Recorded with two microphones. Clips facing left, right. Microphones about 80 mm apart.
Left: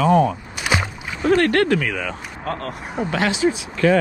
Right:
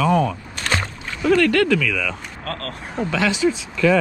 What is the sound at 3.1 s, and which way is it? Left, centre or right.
Speech, left.